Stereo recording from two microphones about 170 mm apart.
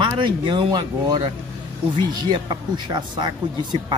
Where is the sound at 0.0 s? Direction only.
25° right (ahead or behind).